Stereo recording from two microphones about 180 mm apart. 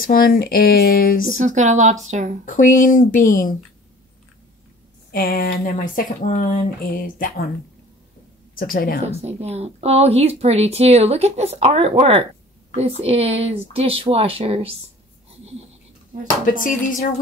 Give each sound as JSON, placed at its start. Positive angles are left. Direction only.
{"t": 0.0, "sound": "speech", "side_deg": 55}
{"t": 1.4, "sound": "a woman's voice", "side_deg": -40}
{"t": 2.4, "sound": "speech", "side_deg": 45}
{"t": 5.1, "sound": "speech", "side_deg": 55}
{"t": 8.5, "sound": "speech", "side_deg": 50}
{"t": 9.0, "sound": "a woman's voice", "side_deg": -35}
{"t": 16.4, "sound": "speech", "side_deg": 50}